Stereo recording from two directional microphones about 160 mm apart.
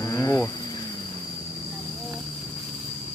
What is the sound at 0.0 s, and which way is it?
Insect, 20° left (ahead or behind).